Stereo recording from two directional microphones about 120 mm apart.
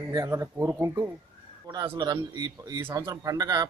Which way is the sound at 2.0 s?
35° right (ahead or behind).